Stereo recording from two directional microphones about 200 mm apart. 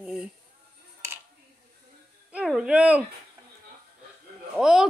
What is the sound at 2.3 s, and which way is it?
Music, 5° right (ahead or behind).